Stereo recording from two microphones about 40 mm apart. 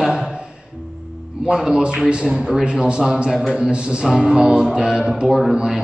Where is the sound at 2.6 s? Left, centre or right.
Right.